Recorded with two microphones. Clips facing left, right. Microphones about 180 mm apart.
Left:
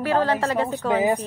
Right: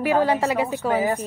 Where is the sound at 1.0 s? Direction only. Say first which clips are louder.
Left 2 dB; 15° left (ahead or behind).